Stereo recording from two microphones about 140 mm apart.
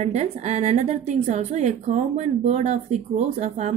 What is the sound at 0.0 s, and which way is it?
A woman's voice, 55° right (ahead or behind).